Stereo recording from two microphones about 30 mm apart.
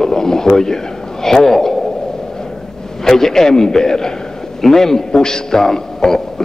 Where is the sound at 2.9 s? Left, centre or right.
Centre.